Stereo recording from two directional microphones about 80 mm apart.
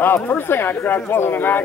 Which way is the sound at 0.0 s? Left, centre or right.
Left.